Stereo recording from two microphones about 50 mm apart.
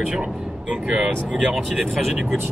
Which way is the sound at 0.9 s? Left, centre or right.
Centre.